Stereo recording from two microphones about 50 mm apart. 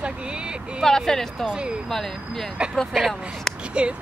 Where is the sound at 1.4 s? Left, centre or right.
Centre.